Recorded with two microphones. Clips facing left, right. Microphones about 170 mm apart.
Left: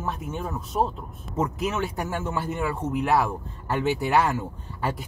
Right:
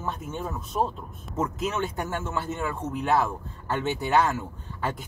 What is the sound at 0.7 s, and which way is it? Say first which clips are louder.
Speech: left 2 dB; 25° left (ahead or behind).